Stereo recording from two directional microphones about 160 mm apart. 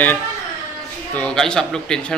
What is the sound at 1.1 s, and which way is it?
A man's voice, 5° left (ahead or behind).